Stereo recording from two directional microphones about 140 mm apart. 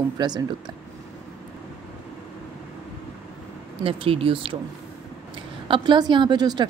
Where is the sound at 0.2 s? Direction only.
35° right (ahead or behind).